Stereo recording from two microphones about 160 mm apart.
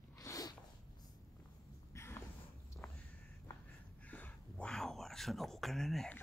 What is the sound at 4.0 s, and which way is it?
Whispering, 10° left (ahead or behind).